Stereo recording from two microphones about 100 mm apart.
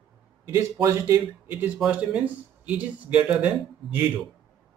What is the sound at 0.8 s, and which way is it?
Speech, 25° right (ahead or behind).